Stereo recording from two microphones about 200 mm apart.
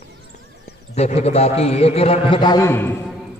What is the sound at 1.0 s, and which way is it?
A man's voice, 30° left (ahead or behind).